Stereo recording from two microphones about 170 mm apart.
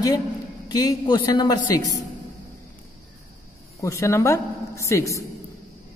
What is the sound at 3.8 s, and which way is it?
A woman's voice, 15° left (ahead or behind).